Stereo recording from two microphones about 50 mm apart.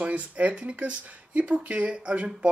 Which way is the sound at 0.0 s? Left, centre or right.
Right.